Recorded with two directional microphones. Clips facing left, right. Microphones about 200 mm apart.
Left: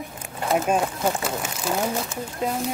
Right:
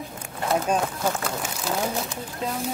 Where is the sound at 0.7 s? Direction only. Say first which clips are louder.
Left 2 dB; 20° left (ahead or behind).